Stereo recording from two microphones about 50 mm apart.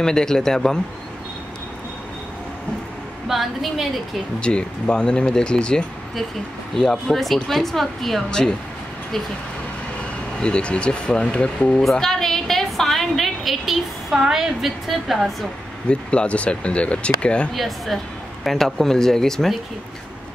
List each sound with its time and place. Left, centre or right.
0.0 s speech: centre
3.3 s speech: centre
4.4 s speech: left
6.7 s speech: centre
8.3 s speech: centre
10.4 s speech: left
11.8 s a woman's voice: centre
15.9 s speech: left
17.6 s speech: centre